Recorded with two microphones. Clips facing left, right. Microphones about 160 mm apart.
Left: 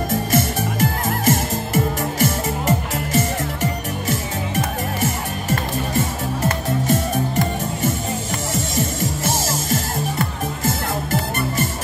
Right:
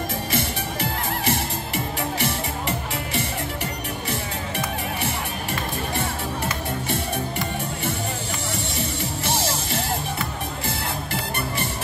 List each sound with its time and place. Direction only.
0.3 s music: 45° left (ahead or behind)
4.6 s music: 45° left (ahead or behind)